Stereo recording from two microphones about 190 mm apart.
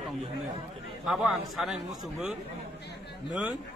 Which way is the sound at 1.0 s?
Centre (ahead or behind).